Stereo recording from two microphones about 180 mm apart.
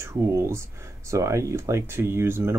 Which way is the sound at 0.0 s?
15° right (ahead or behind).